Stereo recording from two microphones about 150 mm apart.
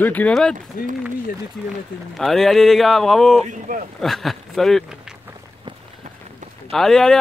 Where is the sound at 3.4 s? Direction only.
55° right (ahead or behind).